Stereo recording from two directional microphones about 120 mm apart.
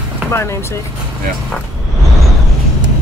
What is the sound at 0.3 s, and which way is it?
Speech, 20° left (ahead or behind).